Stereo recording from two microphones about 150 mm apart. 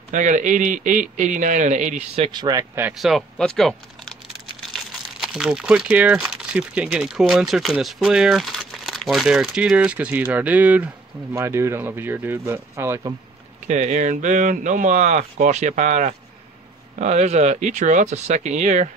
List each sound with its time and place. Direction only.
0.1 s speech: 55° right (ahead or behind)
2.1 s speech: 35° right (ahead or behind)
2.9 s speech: centre (ahead or behind)
4.7 s speech: centre (ahead or behind); by 13.1 s 20° right (ahead or behind)
13.7 s speech: 55° right (ahead or behind)